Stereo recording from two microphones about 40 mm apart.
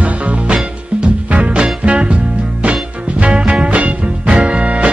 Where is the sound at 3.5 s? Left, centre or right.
Right.